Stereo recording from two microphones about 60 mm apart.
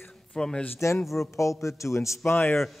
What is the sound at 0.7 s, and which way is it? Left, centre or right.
Speech, left.